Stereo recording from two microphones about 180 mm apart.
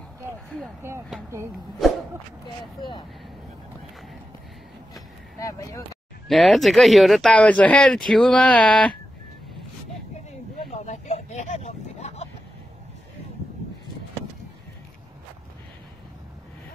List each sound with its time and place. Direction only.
0.8 s speech: 15° right (ahead or behind)
2.6 s speech: 25° left (ahead or behind)
5.4 s speech: 20° left (ahead or behind)
6.2 s speech: centre (ahead or behind)
10.9 s a sound: 40° left (ahead or behind)